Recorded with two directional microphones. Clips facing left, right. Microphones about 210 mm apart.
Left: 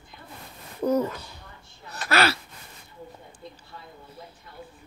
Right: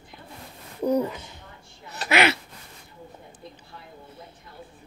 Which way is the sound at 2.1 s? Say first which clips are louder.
Right 2 dB; 20° right (ahead or behind).